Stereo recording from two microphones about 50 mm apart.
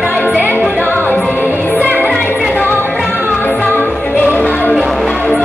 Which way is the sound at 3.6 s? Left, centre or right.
Left.